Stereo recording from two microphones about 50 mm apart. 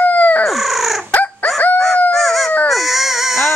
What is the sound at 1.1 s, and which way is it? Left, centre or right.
Fowl, left.